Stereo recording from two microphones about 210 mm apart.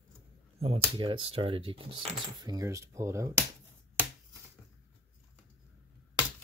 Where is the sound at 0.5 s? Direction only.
30° right (ahead or behind).